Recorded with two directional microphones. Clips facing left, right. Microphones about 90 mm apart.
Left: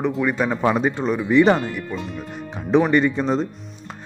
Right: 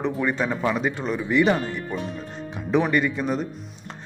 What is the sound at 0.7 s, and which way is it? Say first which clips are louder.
Speech: left 5 dB; 25° left (ahead or behind).